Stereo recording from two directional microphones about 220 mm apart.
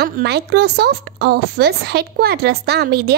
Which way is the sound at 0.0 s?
45° right (ahead or behind).